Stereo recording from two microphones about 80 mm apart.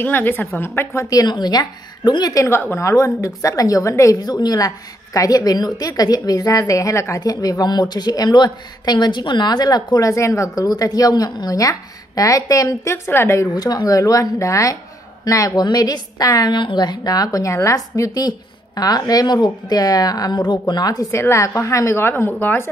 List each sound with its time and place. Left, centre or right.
0.0 s a woman's voice: left
1.1 s a woman's voice: left
2.3 s a woman's voice: left
4.2 s a woman's voice: left
13.4 s a woman's voice: left
15.6 s a woman's voice: left
16.5 s a woman's voice: left
21.1 s a woman's voice: left